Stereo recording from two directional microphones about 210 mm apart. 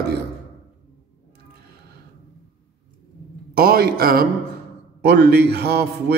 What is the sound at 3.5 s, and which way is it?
A man's voice, 45° right (ahead or behind).